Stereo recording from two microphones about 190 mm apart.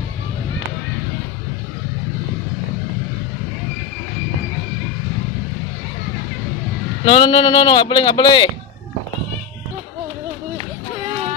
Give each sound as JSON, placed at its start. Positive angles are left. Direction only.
{"t": 7.1, "sound": "speech", "side_deg": 30}